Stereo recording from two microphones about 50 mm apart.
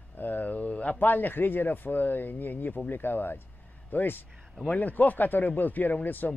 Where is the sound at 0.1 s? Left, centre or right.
Left.